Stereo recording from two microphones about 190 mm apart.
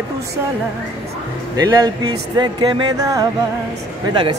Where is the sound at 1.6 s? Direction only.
20° right (ahead or behind).